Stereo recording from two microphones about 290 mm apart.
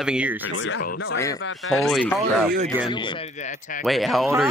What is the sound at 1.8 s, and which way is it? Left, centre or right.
Speech, centre.